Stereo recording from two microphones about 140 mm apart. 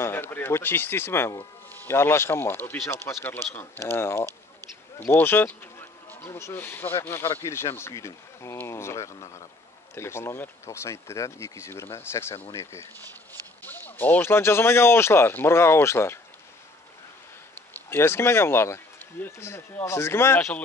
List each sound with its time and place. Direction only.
0.0 s speech: 15° left (ahead or behind)
17.7 s speech: 15° left (ahead or behind)